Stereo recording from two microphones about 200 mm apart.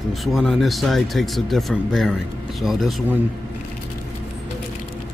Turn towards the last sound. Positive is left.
turn(degrees=-5)  # may be behind; listen again after turning